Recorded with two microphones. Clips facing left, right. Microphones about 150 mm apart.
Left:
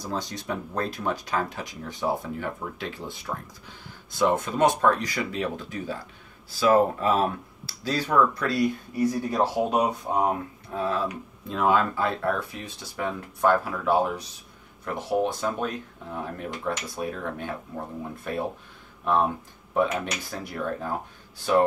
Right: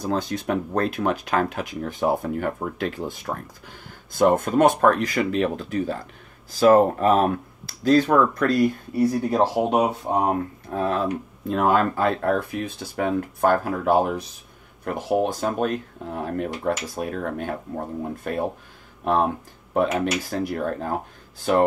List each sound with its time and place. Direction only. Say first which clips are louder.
0.0 s speech: right 7 dB; 60° right (ahead or behind)
19.7 s speech: right 4 dB; 45° right (ahead or behind)